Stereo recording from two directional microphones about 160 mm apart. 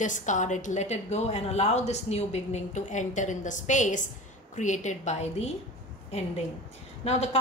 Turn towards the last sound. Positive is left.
turn(degrees=40)  # may be behind; listen again after turning